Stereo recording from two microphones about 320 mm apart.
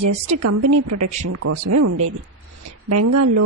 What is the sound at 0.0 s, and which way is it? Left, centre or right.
A woman's voice, right.